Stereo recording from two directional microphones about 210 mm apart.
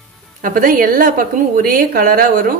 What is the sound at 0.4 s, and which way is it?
Speech, 40° right (ahead or behind).